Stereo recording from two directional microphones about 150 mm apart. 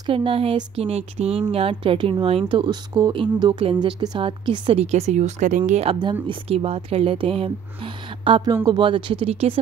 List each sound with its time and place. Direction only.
0.0 s speech: 35° right (ahead or behind); by 5.6 s 55° right (ahead or behind)
5.7 s speech: 40° right (ahead or behind)